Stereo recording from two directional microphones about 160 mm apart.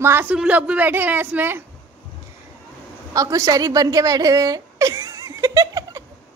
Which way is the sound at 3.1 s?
20° right (ahead or behind).